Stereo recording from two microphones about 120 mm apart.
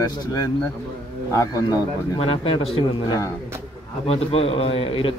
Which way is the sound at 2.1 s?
45° left (ahead or behind).